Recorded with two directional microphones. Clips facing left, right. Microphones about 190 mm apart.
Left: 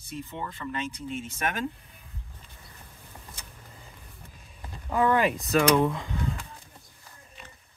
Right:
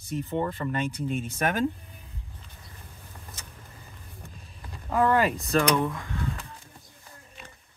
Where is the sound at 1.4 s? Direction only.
40° right (ahead or behind).